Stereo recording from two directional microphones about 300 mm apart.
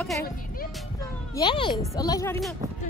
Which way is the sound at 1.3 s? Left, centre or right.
Centre.